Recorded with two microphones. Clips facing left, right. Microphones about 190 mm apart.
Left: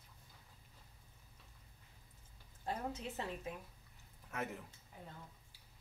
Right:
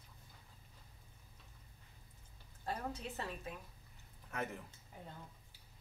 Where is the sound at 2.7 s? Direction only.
20° left (ahead or behind).